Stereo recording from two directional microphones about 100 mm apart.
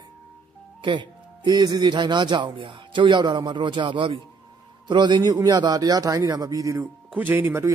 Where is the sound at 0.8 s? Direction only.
50° right (ahead or behind); by 6.8 s 35° right (ahead or behind).